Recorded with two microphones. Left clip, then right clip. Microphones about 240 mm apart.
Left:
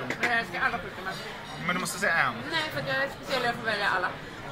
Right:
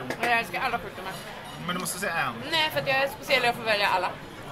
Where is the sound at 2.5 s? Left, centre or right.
Centre.